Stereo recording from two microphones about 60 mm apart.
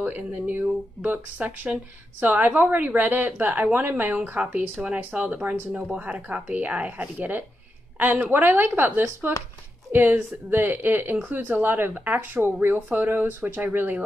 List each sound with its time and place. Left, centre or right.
0.0 s speech: right